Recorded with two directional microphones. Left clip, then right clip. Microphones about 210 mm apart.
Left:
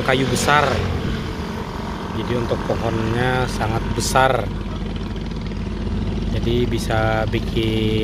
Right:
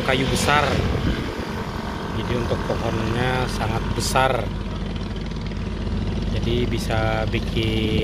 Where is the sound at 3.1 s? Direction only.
25° left (ahead or behind).